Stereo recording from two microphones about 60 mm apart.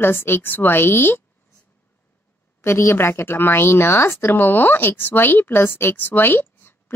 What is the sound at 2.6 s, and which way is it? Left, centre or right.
Speech, left.